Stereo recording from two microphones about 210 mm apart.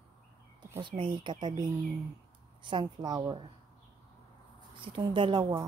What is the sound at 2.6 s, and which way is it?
Speech, 20° right (ahead or behind).